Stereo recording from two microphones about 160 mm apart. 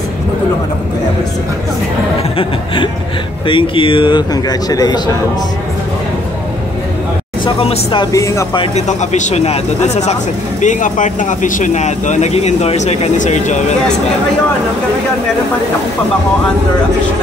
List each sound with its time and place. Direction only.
2.3 s music: 35° left (ahead or behind)
3.4 s a man's voice: 35° left (ahead or behind)
7.4 s a man's voice: 35° left (ahead or behind)
8.5 s speech: 45° left (ahead or behind)